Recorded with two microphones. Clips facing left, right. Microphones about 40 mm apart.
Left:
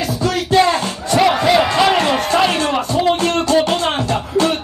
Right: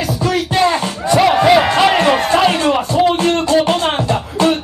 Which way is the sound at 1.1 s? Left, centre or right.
Centre.